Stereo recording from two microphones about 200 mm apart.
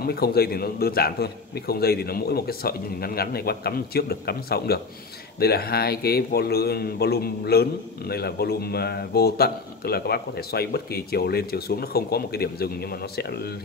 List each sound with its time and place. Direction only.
0.0 s speech: 50° left (ahead or behind)